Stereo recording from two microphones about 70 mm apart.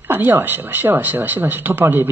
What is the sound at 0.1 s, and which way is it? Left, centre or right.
Speech, right.